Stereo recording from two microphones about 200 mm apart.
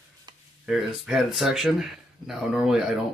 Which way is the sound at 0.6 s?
Centre (ahead or behind).